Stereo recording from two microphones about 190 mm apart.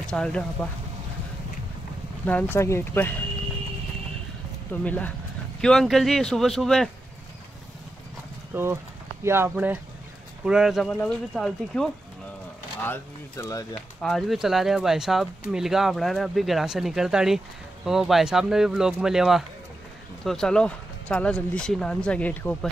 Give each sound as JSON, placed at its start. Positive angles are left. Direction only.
{"t": 0.0, "sound": "speech", "side_deg": 5}
{"t": 2.2, "sound": "speech", "side_deg": 10}
{"t": 4.8, "sound": "speech", "side_deg": 5}
{"t": 8.5, "sound": "speech", "side_deg": -10}
{"t": 12.8, "sound": "speech", "side_deg": 15}
{"t": 14.0, "sound": "speech", "side_deg": 0}